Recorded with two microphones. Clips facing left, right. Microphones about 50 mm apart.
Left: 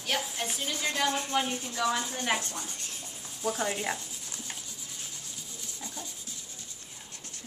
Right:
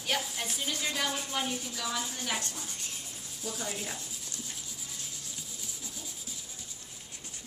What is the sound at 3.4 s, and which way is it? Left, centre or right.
Sanding, left.